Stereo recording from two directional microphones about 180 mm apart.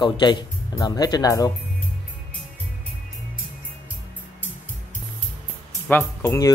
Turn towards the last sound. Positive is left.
turn(degrees=20)  # may be behind; listen again after turning